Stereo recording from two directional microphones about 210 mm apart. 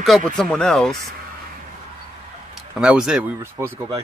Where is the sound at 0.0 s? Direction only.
Centre (ahead or behind).